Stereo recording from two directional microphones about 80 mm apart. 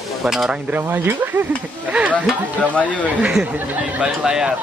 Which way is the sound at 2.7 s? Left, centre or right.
Centre.